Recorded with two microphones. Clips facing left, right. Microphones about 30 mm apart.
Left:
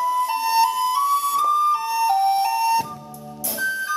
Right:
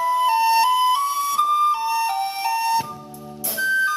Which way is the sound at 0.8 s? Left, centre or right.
Right.